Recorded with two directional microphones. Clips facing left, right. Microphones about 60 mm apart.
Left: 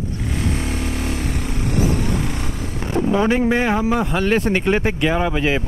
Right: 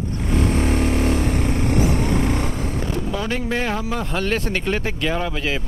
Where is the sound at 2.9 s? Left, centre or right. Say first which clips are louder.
Left 11 dB; left.